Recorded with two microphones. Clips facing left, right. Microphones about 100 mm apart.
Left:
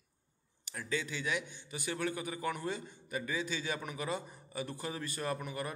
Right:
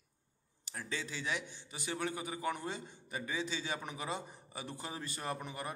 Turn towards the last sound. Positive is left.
turn(degrees=-25)  # may be behind; listen again after turning